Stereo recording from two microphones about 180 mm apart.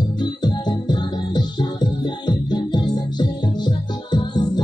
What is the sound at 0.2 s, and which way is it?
Music, 25° left (ahead or behind).